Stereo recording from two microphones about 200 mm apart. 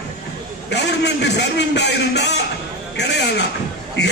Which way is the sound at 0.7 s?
60° left (ahead or behind).